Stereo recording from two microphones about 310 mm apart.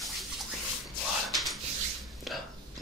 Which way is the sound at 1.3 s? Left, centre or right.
Centre.